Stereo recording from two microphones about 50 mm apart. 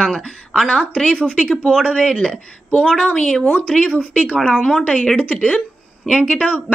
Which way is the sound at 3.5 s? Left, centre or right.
Left.